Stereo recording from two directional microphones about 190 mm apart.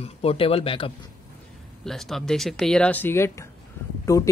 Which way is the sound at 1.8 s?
Centre (ahead or behind).